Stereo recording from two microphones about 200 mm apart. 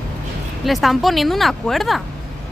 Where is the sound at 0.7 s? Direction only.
Centre (ahead or behind).